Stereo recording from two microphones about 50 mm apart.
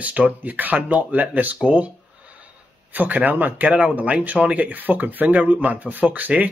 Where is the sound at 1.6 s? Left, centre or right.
Right.